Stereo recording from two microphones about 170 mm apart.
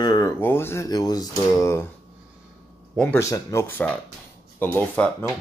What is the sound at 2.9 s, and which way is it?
Speech, 10° left (ahead or behind).